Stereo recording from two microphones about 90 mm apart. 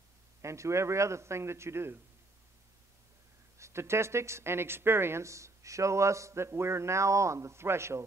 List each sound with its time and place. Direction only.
0.4 s speech: 35° right (ahead or behind)
3.5 s speech: 30° right (ahead or behind)